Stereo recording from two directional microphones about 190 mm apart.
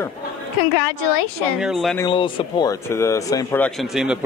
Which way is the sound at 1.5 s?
Centre (ahead or behind).